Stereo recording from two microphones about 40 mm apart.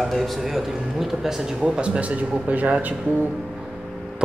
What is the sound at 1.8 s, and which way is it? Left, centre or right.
Speech, right.